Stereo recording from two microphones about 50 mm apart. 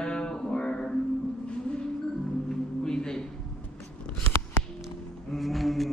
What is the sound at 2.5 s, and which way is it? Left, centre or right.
Music, centre.